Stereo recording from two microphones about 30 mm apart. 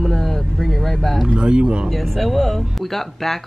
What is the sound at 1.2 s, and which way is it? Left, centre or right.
Speech, right.